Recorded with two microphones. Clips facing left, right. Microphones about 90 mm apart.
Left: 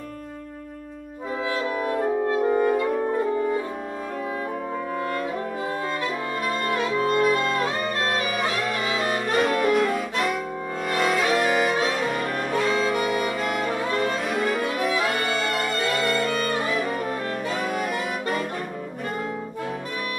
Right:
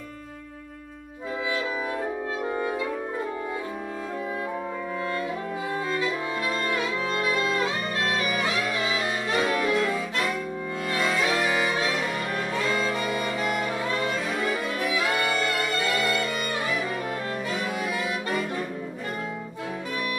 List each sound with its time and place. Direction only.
2.4 s brass instrument: centre (ahead or behind)
6.7 s music: 45° left (ahead or behind)
8.4 s saxophone: 50° left (ahead or behind)
10.9 s music: 55° left (ahead or behind)
12.0 s music: 40° left (ahead or behind)
12.6 s music: centre (ahead or behind)
13.1 s saxophone: 50° left (ahead or behind)
13.8 s music: 50° left (ahead or behind)
17.5 s saxophone: 50° left (ahead or behind)